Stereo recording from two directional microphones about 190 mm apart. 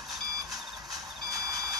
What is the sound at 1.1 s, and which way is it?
Reversing beeps, centre (ahead or behind).